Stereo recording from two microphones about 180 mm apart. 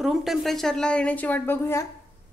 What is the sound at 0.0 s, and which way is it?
A woman's voice, centre (ahead or behind).